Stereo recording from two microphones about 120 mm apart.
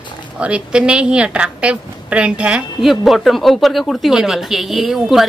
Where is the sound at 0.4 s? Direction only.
10° right (ahead or behind).